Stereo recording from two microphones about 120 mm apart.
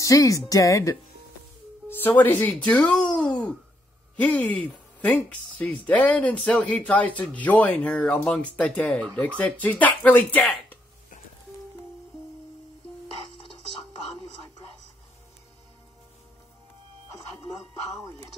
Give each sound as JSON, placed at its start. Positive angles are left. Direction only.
{"t": 0.0, "sound": "speech", "side_deg": 30}
{"t": 1.9, "sound": "speech", "side_deg": 15}
{"t": 5.6, "sound": "speech", "side_deg": 15}